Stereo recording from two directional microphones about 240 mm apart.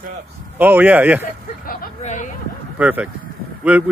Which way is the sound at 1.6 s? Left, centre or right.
Left.